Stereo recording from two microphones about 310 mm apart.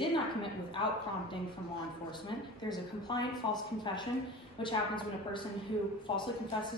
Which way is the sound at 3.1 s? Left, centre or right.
Centre.